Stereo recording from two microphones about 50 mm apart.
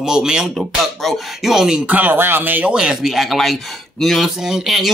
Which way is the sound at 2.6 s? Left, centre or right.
Centre.